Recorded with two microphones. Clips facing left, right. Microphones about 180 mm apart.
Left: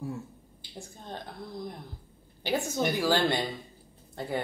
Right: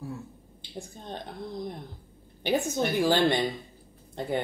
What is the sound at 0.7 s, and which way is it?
Speech, 20° right (ahead or behind).